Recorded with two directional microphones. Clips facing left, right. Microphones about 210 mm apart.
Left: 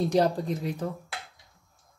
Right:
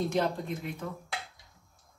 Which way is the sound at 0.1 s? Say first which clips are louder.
Left 6 dB; 35° left (ahead or behind).